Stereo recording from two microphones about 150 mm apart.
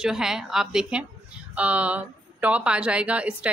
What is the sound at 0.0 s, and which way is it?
A woman's voice, 5° right (ahead or behind).